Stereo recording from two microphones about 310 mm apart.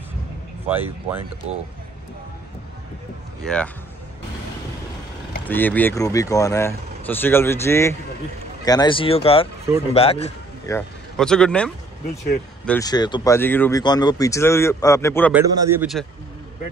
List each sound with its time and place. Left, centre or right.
0.7 s a man's voice: centre
3.4 s speech: centre
5.5 s a man's voice: centre
10.7 s speech: centre
15.3 s a man's voice: centre